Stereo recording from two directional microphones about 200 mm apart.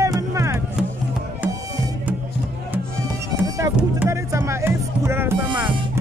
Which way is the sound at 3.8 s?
10° right (ahead or behind).